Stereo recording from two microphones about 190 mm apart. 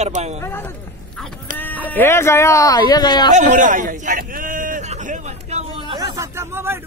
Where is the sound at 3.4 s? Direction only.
40° right (ahead or behind).